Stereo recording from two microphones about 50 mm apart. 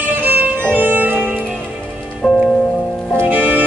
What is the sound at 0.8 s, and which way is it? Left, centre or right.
Music, right.